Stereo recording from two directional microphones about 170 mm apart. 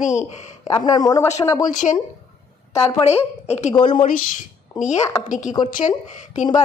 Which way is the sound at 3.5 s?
40° left (ahead or behind).